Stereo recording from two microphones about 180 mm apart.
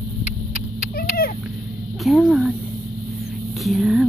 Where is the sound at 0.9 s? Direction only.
55° left (ahead or behind).